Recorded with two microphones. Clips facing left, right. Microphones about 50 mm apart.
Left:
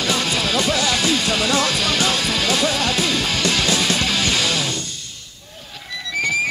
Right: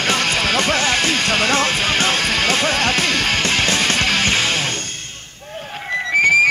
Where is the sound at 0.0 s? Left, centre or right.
Right.